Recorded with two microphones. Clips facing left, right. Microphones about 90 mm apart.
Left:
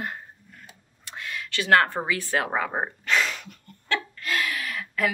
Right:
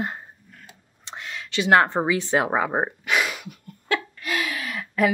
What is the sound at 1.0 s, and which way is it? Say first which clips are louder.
Speech: even; 20° right (ahead or behind).